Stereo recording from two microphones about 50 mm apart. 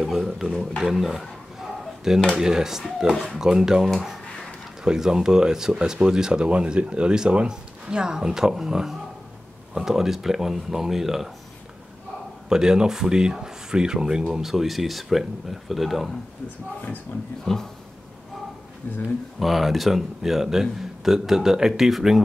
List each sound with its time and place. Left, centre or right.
0.0 s speech: centre
2.3 s speech: centre
12.4 s speech: centre
17.5 s speech: centre
19.4 s speech: centre